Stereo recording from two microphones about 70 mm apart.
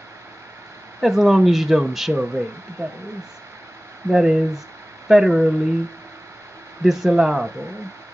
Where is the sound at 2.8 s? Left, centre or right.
Right.